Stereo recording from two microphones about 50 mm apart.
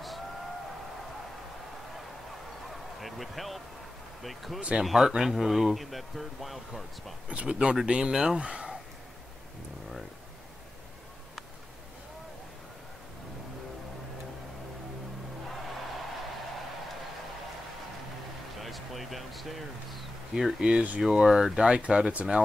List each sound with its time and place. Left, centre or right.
2.7 s a sound: centre
4.2 s speech: centre
4.6 s speech: right
4.8 s speech: centre
7.2 s speech: right
18.6 s a sound: centre
20.6 s speech: right
21.0 s speech: centre